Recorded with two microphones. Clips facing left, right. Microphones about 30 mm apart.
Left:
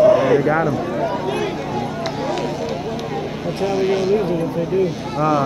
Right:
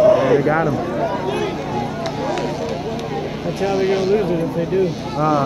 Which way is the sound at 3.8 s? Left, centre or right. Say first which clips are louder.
Even; right.